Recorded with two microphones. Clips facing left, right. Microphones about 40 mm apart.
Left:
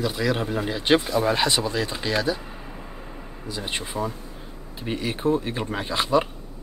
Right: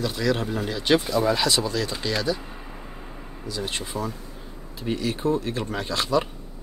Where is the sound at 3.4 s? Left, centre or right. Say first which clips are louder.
Even; left.